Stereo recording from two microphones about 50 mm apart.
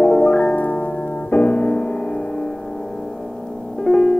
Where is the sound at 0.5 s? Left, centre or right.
Left.